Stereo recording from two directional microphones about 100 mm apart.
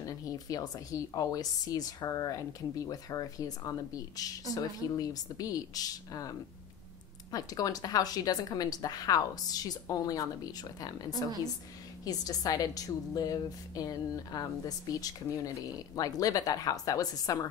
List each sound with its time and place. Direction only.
0.0 s a woman's voice: 40° left (ahead or behind)